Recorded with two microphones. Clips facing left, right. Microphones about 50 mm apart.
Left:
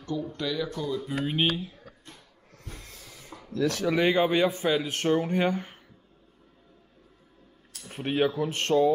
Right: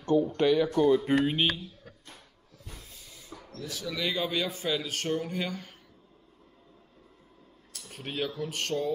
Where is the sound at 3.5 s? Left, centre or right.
Left.